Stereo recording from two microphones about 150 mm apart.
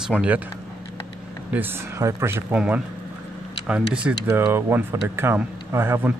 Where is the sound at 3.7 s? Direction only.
5° right (ahead or behind).